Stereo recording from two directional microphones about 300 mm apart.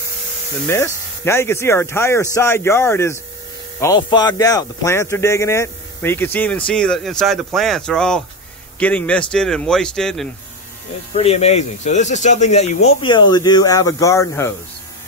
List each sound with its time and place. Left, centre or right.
0.7 s speech: centre
11.1 s speech: left